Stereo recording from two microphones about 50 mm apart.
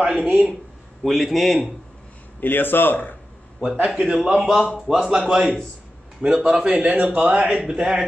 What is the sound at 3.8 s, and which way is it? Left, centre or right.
Speech, centre.